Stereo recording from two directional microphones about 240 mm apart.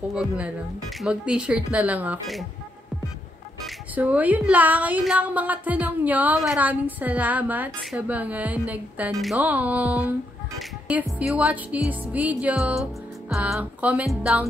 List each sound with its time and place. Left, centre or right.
0.1 s speech: centre
3.6 s a woman's voice: centre